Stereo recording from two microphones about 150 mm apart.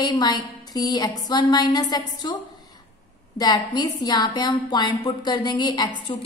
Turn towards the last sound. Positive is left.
turn(degrees=35)  # may be behind; listen again after turning